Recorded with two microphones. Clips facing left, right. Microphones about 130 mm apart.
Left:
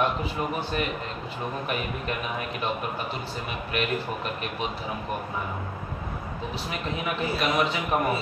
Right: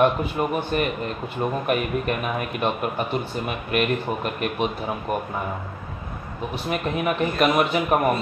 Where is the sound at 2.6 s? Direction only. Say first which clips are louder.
Right 6 dB; 60° right (ahead or behind).